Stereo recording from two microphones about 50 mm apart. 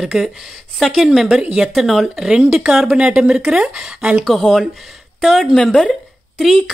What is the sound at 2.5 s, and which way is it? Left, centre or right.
Speech, centre.